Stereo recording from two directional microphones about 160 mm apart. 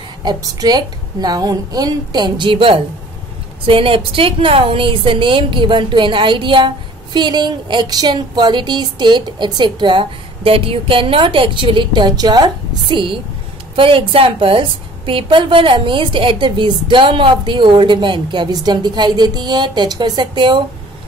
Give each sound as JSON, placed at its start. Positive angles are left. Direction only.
{"t": 0.2, "sound": "a woman's voice", "side_deg": -25}